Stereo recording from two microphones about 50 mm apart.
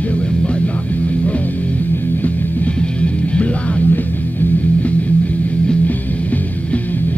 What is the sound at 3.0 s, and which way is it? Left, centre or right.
Music, left.